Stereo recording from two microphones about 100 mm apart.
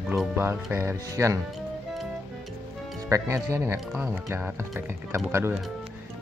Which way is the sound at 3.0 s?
35° right (ahead or behind).